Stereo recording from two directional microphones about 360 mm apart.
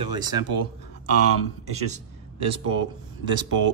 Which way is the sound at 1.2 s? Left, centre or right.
Right.